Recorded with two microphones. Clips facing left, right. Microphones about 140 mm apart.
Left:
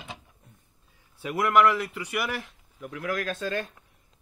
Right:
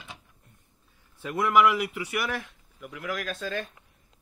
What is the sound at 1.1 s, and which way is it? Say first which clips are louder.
Speech: left 1 dB; 5° left (ahead or behind).